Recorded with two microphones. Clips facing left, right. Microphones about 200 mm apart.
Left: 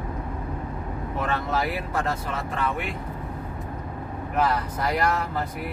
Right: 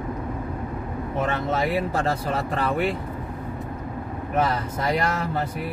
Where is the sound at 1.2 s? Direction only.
25° right (ahead or behind).